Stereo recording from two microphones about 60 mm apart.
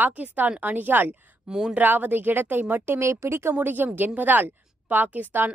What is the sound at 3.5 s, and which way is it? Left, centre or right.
A woman's voice, right.